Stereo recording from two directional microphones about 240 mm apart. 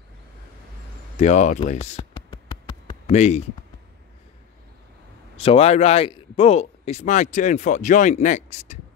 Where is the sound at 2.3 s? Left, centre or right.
Centre.